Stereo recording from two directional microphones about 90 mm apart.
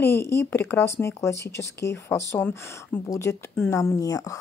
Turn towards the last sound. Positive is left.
turn(degrees=35)  # may be behind; listen again after turning